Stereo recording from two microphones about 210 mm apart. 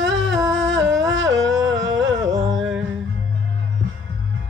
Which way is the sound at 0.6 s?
60° right (ahead or behind).